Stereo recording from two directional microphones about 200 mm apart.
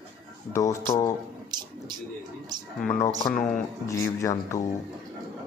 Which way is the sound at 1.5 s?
20° right (ahead or behind).